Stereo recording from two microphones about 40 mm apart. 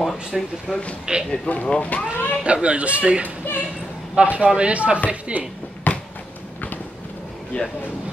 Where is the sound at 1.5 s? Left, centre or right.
Left.